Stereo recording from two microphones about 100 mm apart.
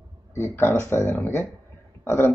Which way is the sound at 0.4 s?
25° left (ahead or behind).